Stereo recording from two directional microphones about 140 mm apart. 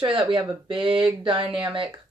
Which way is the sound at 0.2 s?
35° right (ahead or behind).